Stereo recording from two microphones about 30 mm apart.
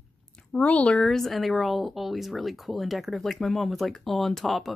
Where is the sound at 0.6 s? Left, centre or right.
Left.